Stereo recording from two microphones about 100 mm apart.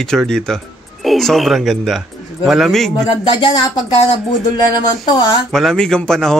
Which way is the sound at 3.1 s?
50° left (ahead or behind).